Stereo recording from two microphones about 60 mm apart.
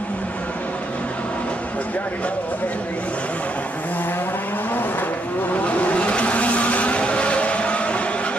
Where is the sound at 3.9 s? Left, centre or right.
Left.